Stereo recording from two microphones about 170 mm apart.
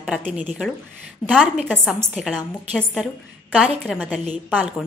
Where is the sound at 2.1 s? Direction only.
5° right (ahead or behind).